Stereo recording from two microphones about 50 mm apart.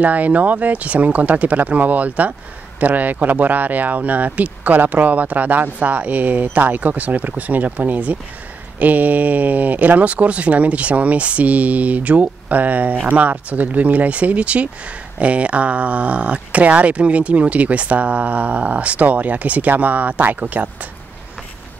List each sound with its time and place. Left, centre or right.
0.0 s speech: right